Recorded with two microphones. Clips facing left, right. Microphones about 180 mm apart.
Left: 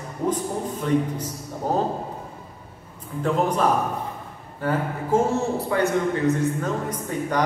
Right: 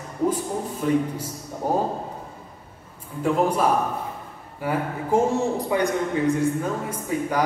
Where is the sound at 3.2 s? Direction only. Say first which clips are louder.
Right 1 dB; 10° right (ahead or behind).